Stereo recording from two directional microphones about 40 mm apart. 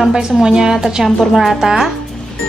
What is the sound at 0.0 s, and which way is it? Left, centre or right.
A woman's voice, centre.